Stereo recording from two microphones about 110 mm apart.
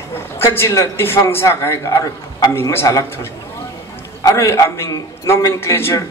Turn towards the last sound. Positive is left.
turn(degrees=25)  # may be behind; listen again after turning